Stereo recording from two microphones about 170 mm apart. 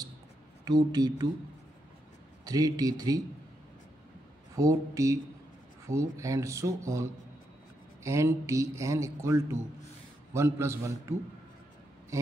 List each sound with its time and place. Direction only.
0.7 s speech: 25° right (ahead or behind)
2.4 s speech: 20° right (ahead or behind)
4.6 s speech: 20° right (ahead or behind)
12.1 s a sound: 15° right (ahead or behind)